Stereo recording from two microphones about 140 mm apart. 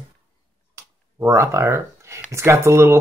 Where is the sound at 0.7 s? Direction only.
20° right (ahead or behind).